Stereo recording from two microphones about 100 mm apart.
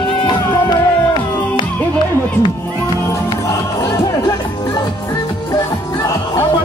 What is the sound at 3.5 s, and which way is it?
Music, 30° left (ahead or behind).